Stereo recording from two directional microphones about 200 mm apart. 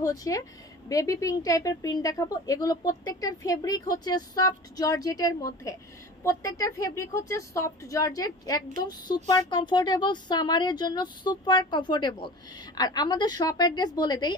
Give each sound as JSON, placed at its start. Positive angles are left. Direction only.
{"t": 0.0, "sound": "a woman's voice", "side_deg": 15}